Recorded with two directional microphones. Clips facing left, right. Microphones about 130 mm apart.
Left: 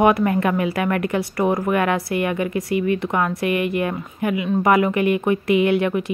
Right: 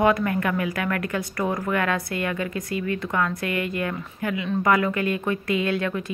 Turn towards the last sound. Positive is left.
turn(degrees=20)  # may be behind; listen again after turning